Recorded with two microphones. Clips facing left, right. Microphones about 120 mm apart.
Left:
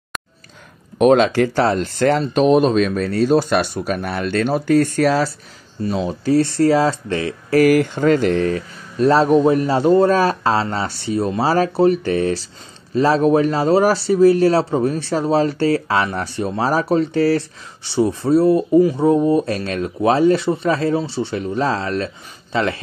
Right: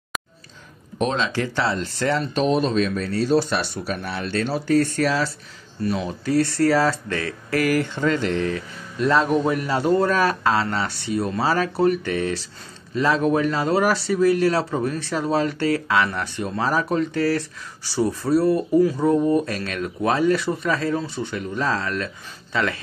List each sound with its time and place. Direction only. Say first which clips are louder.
1.0 s speech: left 10 dB; 55° left (ahead or behind)
5.9 s speech: left 5 dB; 25° left (ahead or behind)
7.5 s speech: left 8 dB; 45° left (ahead or behind); by 18.6 s 25° left (ahead or behind)
19.1 s speech: left 3 dB; 10° left (ahead or behind)
19.4 s speech: left 5 dB; 30° left (ahead or behind)